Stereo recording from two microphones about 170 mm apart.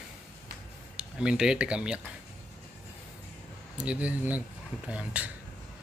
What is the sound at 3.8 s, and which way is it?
Speech, 5° right (ahead or behind).